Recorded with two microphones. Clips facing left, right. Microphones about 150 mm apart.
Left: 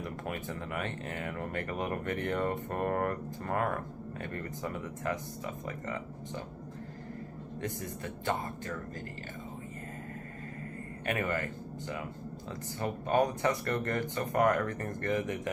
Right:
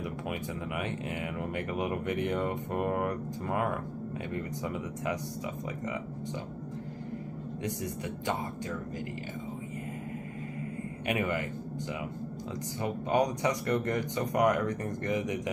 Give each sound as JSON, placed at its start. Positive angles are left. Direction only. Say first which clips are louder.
{"t": 0.0, "sound": "speech", "louder": "right 2 dB", "side_deg": -10}
{"t": 7.6, "sound": "speech", "louder": "right 3 dB", "side_deg": -15}
{"t": 11.1, "sound": "speech", "louder": "right 2 dB", "side_deg": -15}
{"t": 12.8, "sound": "speech", "louder": "even", "side_deg": -15}